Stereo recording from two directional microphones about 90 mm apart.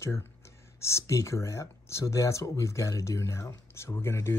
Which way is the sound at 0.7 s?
30° left (ahead or behind).